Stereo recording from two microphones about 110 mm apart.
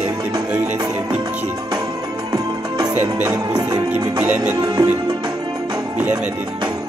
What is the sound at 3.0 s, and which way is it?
Music, 30° right (ahead or behind).